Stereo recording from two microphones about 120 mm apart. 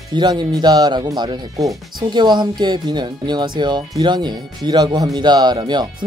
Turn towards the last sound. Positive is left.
turn(degrees=-35)  # may be behind; listen again after turning